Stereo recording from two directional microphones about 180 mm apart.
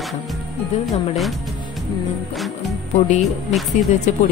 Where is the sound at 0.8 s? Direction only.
Centre (ahead or behind).